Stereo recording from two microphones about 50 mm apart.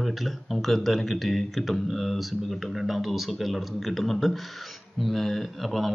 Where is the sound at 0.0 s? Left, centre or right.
Centre.